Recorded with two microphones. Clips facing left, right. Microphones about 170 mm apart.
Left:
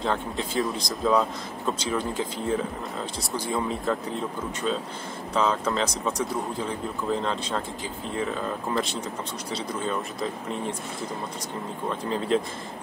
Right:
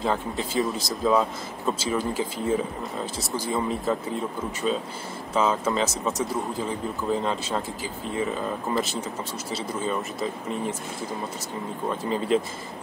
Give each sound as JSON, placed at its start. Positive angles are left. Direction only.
{"t": 0.0, "sound": "speech", "side_deg": 0}
{"t": 12.0, "sound": "speech", "side_deg": -5}